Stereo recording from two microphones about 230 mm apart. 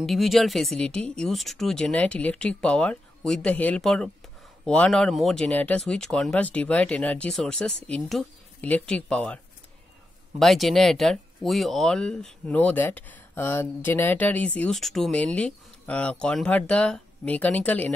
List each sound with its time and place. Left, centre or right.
0.0 s speech: centre
10.4 s speech: centre